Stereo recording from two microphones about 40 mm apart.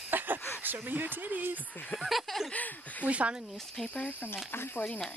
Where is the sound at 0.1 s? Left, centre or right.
Right.